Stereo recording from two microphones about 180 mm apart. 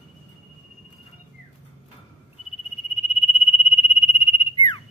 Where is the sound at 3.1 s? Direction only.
30° left (ahead or behind).